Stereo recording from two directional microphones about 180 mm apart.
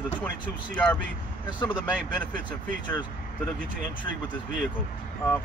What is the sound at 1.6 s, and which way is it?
Speech, 25° left (ahead or behind).